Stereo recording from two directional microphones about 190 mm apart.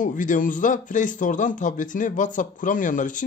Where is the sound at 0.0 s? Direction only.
45° left (ahead or behind).